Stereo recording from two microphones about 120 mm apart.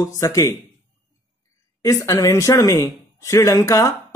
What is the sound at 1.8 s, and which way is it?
Speech, 25° left (ahead or behind).